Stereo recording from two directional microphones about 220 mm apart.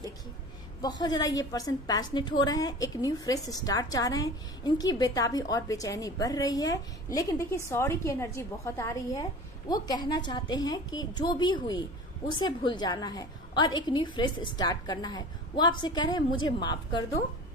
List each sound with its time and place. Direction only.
0.7 s a woman's voice: 20° left (ahead or behind)